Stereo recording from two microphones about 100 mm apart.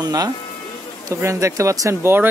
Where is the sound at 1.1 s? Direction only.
30° right (ahead or behind).